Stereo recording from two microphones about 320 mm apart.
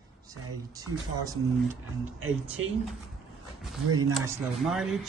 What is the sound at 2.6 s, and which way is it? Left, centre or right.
Speech, right.